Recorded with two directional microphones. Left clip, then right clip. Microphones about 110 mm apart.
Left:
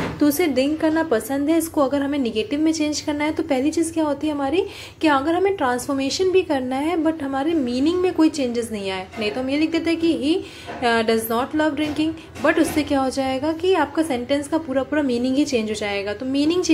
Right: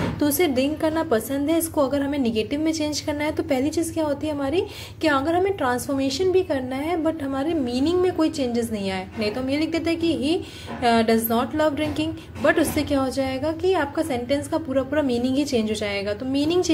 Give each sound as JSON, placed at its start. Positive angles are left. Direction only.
{"t": 0.2, "sound": "a woman's voice", "side_deg": -25}